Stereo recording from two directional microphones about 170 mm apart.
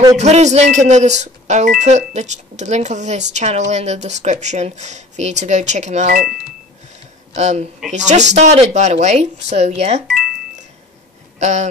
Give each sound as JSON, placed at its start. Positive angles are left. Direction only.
{"t": 0.2, "sound": "speech", "side_deg": -40}
{"t": 7.3, "sound": "speech", "side_deg": -40}
{"t": 11.3, "sound": "speech", "side_deg": -40}